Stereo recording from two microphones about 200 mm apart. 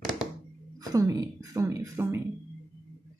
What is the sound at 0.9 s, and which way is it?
Speech, 15° right (ahead or behind).